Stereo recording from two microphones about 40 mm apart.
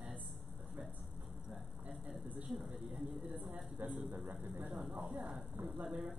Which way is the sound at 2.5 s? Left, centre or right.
Centre.